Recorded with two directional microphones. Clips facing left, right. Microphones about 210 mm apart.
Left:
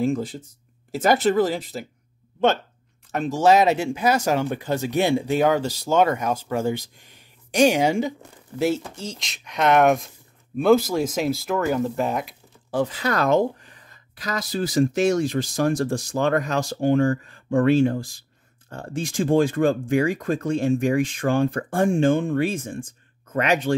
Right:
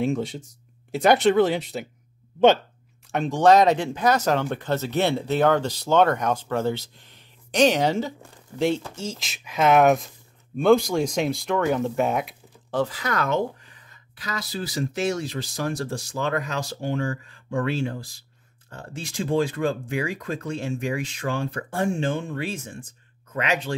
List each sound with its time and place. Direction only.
0.0 s speech: centre (ahead or behind)
3.1 s speech: 5° left (ahead or behind)
12.7 s speech: 20° left (ahead or behind)
13.0 s speech: 35° left (ahead or behind)